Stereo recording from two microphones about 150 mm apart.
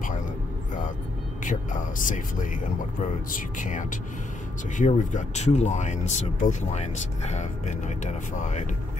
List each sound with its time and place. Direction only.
1.4 s speech: 55° left (ahead or behind)